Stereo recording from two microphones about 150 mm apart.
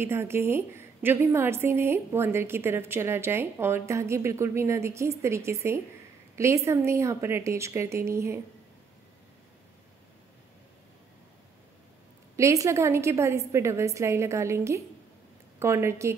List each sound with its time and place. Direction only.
0.0 s a woman's voice: 15° right (ahead or behind)
12.4 s a woman's voice: 20° right (ahead or behind)